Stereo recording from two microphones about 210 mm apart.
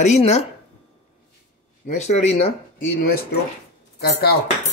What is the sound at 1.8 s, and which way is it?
Dishes, 35° left (ahead or behind).